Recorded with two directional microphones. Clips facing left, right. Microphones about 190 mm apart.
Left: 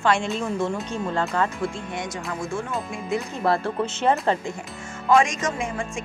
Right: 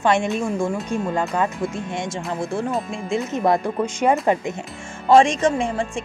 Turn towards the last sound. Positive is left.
turn(degrees=-30)  # may be behind; listen again after turning